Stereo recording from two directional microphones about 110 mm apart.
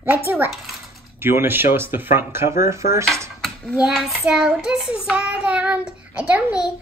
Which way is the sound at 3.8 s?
Centre (ahead or behind).